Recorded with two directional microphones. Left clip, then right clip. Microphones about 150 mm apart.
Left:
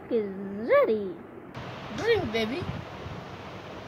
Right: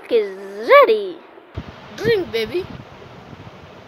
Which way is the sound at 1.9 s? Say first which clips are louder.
Right 7 dB; 90° right.